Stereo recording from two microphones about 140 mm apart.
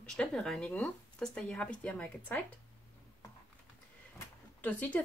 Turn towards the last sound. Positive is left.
turn(degrees=10)  # may be behind; listen again after turning